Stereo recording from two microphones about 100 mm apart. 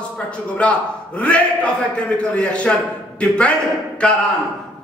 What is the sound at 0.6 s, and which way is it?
A man's voice, 15° left (ahead or behind).